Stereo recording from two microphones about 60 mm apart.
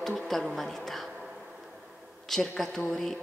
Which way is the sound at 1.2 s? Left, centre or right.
Centre.